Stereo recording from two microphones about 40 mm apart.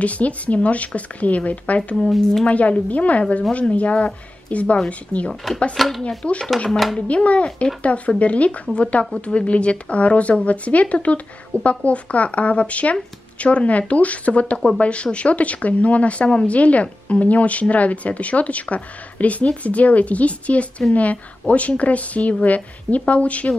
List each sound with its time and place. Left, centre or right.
0.0 s speech: left
2.0 s speech: centre
2.4 s speech: left
5.3 s speech: centre
6.0 s speech: left